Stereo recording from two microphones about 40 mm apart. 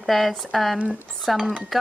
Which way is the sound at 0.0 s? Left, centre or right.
Centre.